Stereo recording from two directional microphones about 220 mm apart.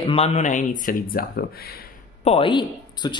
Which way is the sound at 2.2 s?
25° left (ahead or behind).